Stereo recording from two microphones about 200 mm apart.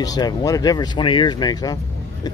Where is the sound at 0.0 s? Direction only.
20° left (ahead or behind).